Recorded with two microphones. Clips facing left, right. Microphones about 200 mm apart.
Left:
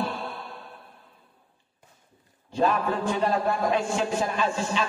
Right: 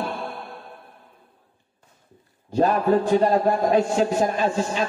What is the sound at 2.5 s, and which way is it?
A man's voice, 40° right (ahead or behind).